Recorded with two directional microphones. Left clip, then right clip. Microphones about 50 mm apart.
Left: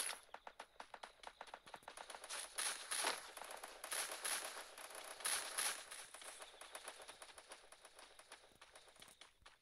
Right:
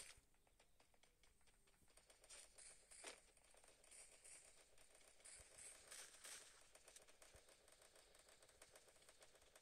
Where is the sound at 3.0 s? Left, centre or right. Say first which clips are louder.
Left 15 dB; left.